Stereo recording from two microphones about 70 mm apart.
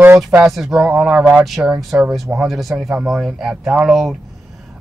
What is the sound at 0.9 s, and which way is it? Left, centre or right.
Speech, centre.